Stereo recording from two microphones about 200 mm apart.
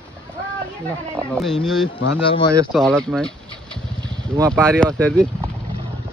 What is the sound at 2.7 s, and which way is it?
A man's voice, 5° left (ahead or behind).